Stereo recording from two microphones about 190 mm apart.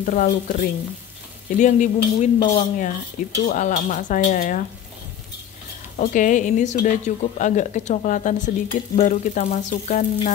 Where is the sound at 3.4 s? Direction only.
45° left (ahead or behind).